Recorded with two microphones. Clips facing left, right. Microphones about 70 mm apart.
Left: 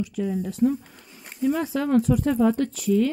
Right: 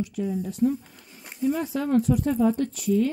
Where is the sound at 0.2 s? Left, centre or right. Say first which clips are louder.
Left 2 dB; left.